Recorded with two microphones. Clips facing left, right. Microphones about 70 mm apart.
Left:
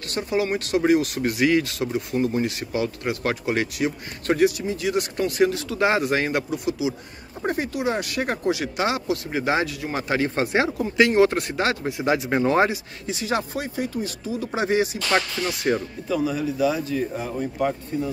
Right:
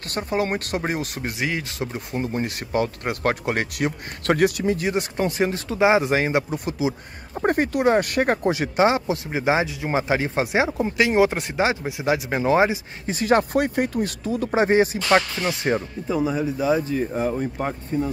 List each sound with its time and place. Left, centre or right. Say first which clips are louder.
0.1 s speech: even; right
4.8 s speech: even; right
5.8 s speech: right 3 dB; centre
6.5 s speech: even; right; by 11.9 s centre
12.0 s speech: left 2 dB; centre
13.0 s speech: right 7 dB; right
14.5 s speech: right 4 dB; right